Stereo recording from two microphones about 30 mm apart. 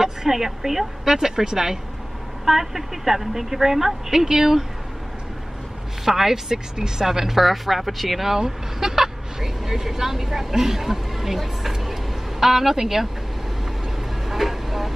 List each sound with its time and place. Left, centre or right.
0.0 s a woman's voice: centre
6.0 s a woman's voice: centre
8.5 s speech: centre
14.3 s vehicle: centre